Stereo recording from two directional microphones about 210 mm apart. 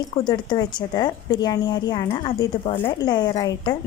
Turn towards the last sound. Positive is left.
turn(degrees=20)  # may be behind; listen again after turning